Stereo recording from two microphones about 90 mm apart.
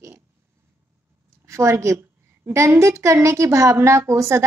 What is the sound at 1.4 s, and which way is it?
A woman's voice, 35° right (ahead or behind).